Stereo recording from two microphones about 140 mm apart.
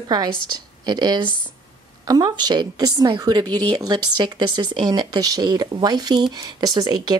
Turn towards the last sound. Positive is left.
turn(degrees=-30)  # may be behind; listen again after turning